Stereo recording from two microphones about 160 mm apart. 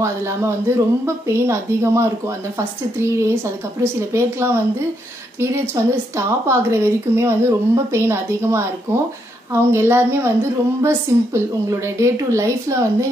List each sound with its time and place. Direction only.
0.0 s a woman's voice: 15° right (ahead or behind)
5.8 s a woman's voice: 20° right (ahead or behind)